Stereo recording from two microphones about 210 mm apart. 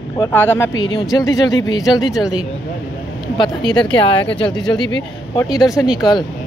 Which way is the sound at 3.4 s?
20° left (ahead or behind).